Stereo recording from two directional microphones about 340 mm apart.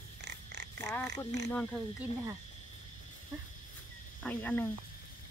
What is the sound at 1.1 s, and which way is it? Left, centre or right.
Speech, right.